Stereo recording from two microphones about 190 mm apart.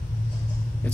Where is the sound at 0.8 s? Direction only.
10° left (ahead or behind).